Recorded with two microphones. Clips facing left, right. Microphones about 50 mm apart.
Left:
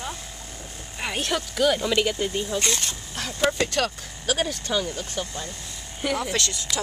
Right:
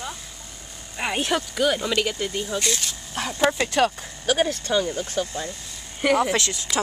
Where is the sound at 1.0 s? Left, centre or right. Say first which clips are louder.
Right 3 dB; centre.